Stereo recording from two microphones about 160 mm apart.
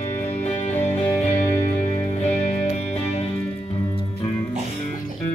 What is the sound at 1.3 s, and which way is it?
Music, 10° left (ahead or behind).